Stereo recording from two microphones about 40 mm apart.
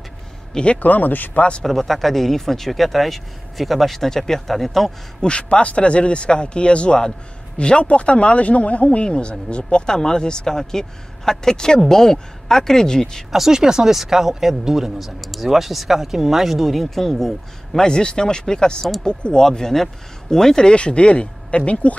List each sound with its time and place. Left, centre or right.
0.7 s speech: left
1.6 s speech: centre
5.2 s speech: left
13.3 s speech: centre
17.7 s speech: centre
20.7 s speech: left